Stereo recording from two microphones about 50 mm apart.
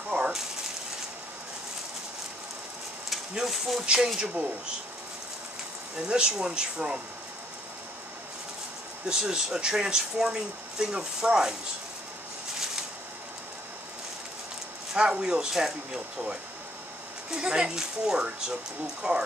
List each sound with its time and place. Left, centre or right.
0.1 s a sound: centre
3.4 s speech: centre
3.8 s speech: centre
5.9 s speech: centre
9.0 s speech: centre
15.0 s speech: centre